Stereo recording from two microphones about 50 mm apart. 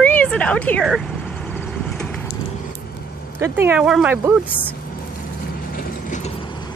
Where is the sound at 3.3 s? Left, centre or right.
Right.